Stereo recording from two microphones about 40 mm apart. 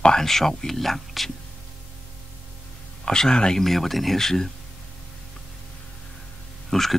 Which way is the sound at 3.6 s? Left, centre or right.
Centre.